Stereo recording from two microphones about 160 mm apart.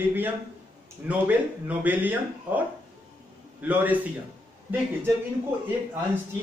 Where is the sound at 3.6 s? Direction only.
10° right (ahead or behind).